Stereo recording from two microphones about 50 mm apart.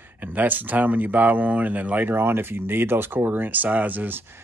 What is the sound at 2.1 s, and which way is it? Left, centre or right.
Speech, right.